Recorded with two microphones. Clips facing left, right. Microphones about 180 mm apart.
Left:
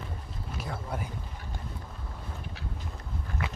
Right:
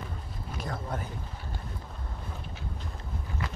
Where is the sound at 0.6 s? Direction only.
10° left (ahead or behind).